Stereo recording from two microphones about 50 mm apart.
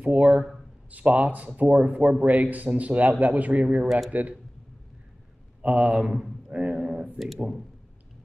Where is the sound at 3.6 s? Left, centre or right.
Centre.